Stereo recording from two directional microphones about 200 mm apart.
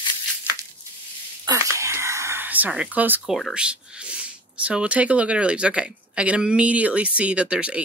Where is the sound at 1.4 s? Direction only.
15° right (ahead or behind).